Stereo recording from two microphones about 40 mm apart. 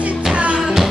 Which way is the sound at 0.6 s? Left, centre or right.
Centre.